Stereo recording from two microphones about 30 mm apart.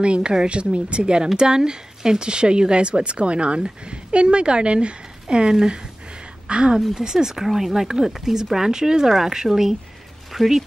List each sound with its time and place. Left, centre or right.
0.0 s a woman's voice: right
7.0 s speech: centre